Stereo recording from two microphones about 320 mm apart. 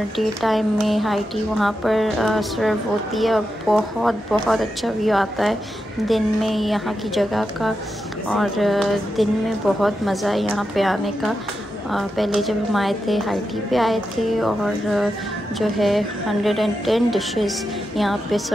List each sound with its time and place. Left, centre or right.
0.2 s a woman's voice: centre